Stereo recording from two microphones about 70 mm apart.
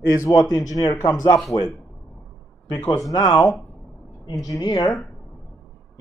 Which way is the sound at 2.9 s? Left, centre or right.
Left.